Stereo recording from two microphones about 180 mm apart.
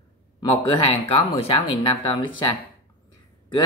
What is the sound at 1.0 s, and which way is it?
Speech, 30° left (ahead or behind).